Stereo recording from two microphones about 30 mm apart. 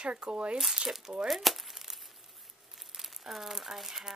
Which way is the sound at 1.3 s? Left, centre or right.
Centre.